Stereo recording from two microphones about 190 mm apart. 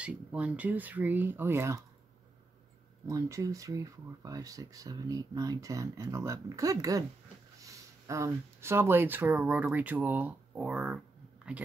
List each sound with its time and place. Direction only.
0.0 s speech: 5° right (ahead or behind)
3.1 s speech: 15° right (ahead or behind)